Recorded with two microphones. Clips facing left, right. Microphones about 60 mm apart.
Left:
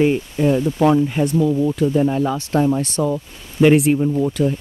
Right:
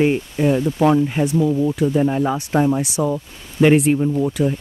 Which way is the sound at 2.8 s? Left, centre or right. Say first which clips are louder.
Even; centre.